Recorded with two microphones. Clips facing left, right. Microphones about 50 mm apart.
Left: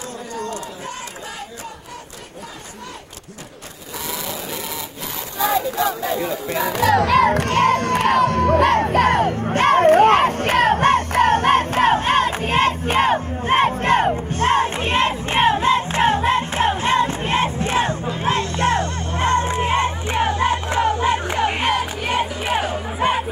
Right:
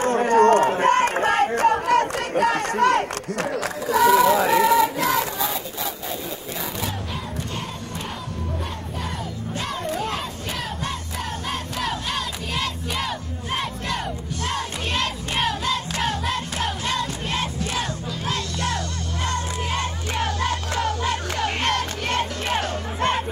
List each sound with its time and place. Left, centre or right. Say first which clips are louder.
0.0 s run: right 13 dB; right
3.9 s child singing: right 14 dB; right
6.6 s music: left 16 dB; left; by 23.2 s centre